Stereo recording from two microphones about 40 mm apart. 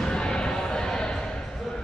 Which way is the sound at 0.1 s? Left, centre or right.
Centre.